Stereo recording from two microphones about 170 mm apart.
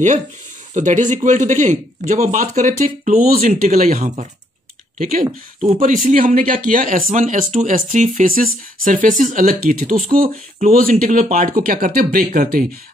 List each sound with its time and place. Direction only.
0.7 s speech: 45° right (ahead or behind)
6.0 s speech: 55° right (ahead or behind)